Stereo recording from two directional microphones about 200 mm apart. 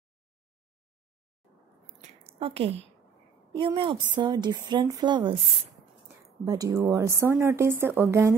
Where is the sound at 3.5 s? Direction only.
25° right (ahead or behind).